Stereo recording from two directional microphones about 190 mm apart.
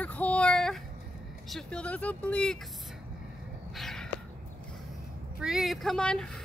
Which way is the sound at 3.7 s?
Centre (ahead or behind).